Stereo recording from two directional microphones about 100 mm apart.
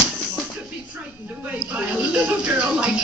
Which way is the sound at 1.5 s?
15° right (ahead or behind).